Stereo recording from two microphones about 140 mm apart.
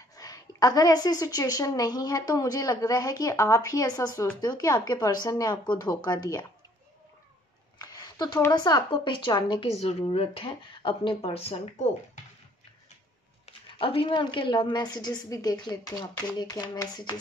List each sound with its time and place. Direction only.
0.1 s a woman's voice: 25° left (ahead or behind)
7.8 s a sound: 30° left (ahead or behind)
8.5 s a woman's voice: 30° left (ahead or behind); by 11.9 s 45° left (ahead or behind)
13.7 s a woman's voice: 40° left (ahead or behind)